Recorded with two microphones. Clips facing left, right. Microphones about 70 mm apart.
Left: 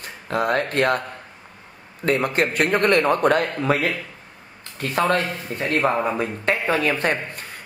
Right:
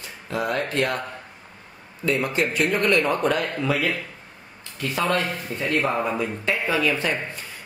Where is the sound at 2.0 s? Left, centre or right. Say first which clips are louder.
Left 3 dB; left.